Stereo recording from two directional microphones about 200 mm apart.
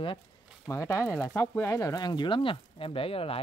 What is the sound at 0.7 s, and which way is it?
Speech, 15° left (ahead or behind).